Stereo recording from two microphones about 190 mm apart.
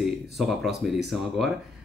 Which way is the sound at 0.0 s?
Centre (ahead or behind).